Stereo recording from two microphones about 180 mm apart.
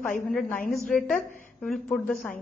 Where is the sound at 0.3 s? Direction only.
5° left (ahead or behind).